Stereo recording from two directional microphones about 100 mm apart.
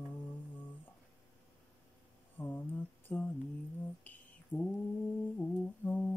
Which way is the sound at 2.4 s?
20° left (ahead or behind).